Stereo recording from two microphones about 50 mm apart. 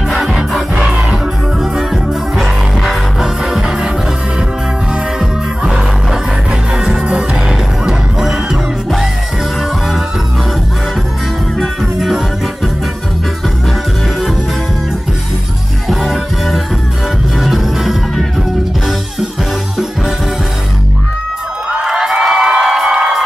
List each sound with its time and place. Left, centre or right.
0.1 s music: centre
2.3 s music: centre
5.2 s music: centre
11.8 s music: centre
15.9 s music: centre
21.6 s cheering: centre
22.0 s music: centre